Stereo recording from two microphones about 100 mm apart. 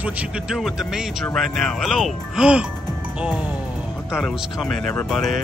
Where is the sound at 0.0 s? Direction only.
10° right (ahead or behind).